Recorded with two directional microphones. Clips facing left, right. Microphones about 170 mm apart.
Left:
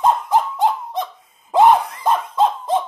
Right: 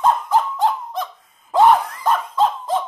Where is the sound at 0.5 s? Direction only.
25° left (ahead or behind).